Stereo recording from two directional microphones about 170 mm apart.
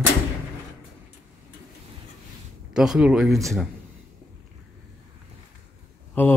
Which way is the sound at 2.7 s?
5° right (ahead or behind).